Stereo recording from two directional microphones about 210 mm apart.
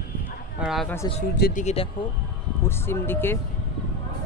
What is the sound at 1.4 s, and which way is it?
Speech, 35° left (ahead or behind).